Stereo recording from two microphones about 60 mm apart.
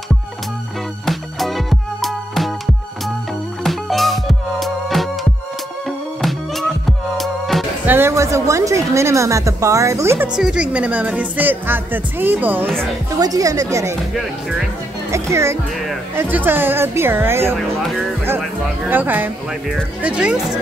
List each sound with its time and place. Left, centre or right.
1.0 s music: centre
7.8 s music: right
8.1 s speech: right
10.3 s speech: centre; by 12.6 s right
13.1 s speech: right
15.0 s music: right
16.2 s a woman's voice: right
18.9 s a woman's voice: right
20.0 s speech: right